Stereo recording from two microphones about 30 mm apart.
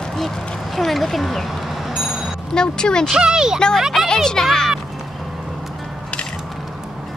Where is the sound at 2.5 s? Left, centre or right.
Left.